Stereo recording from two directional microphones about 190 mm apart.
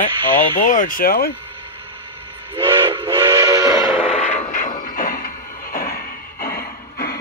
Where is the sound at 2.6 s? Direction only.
25° right (ahead or behind).